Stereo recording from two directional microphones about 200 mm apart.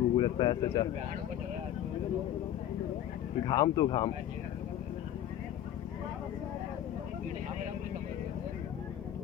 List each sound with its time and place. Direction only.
0.1 s speech: 20° left (ahead or behind)
3.4 s speech: 20° left (ahead or behind)